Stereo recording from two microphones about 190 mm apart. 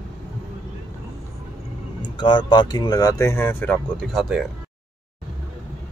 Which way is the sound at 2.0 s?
25° left (ahead or behind).